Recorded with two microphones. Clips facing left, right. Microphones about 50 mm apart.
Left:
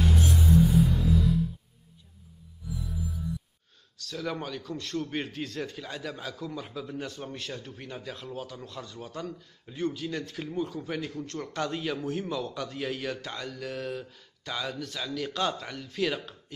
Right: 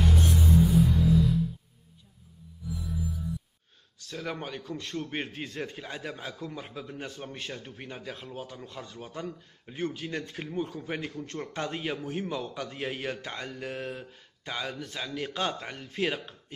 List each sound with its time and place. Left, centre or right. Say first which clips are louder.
0.0 s music: even; centre
2.8 s music: right 2 dB; centre
4.3 s a man's voice: left 1 dB; right
4.7 s a man's voice: left 2 dB; centre
6.1 s a man's voice: left 1 dB; centre
6.5 s a man's voice: left 3 dB; right
9.7 s a man's voice: left 2 dB; right
12.0 s a man's voice: left 2 dB; centre
12.3 s a man's voice: left 1 dB; right